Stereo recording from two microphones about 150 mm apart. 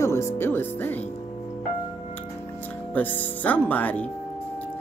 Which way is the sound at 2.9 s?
10° left (ahead or behind).